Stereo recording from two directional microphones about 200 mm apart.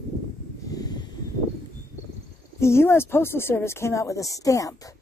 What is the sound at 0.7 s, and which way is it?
Snort, 20° left (ahead or behind).